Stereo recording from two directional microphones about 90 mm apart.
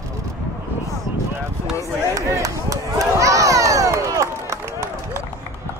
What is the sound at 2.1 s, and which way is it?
Run, 40° right (ahead or behind).